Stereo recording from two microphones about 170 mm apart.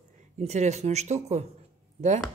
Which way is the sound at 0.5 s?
40° right (ahead or behind).